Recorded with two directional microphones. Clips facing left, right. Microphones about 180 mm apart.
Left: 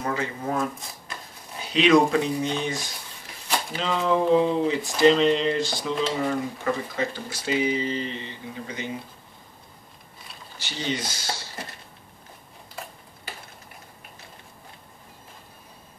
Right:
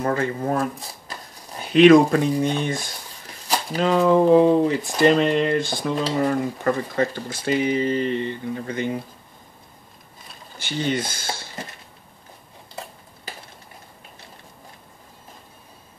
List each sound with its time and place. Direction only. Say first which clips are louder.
0.0 s speech: right 5 dB; 50° right (ahead or behind)
10.6 s speech: right 5 dB; 55° right (ahead or behind)